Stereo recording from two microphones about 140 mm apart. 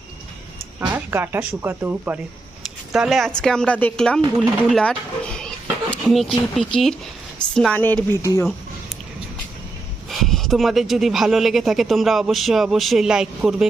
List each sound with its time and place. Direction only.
0.7 s speech: 15° right (ahead or behind)
2.9 s speech: centre (ahead or behind); by 8.5 s 20° left (ahead or behind)
10.0 s speech: centre (ahead or behind)